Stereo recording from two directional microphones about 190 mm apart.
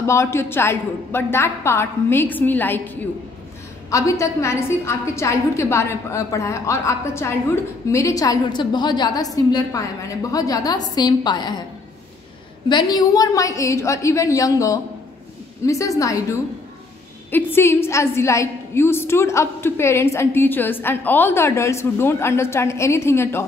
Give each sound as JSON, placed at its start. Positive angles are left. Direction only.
{"t": 0.0, "sound": "a woman's voice", "side_deg": 15}
{"t": 12.6, "sound": "a woman's voice", "side_deg": 25}